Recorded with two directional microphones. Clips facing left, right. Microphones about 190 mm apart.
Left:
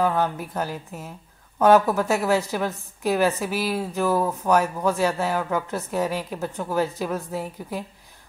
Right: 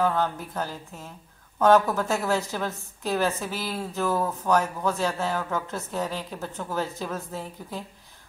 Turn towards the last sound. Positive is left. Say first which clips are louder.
# left 5 dB
turn(degrees=15)  # may be behind; listen again after turning